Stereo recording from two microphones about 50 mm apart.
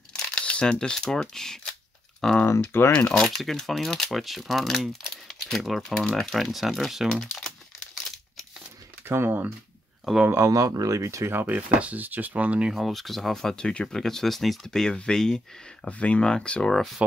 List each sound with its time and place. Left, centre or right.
0.1 s speech: left
2.7 s speech: left
3.3 s speech: centre
5.1 s camera: centre
5.8 s speech: centre
9.0 s speech: right
10.3 s speech: right
11.3 s speech: right
12.7 s speech: centre
15.9 s speech: left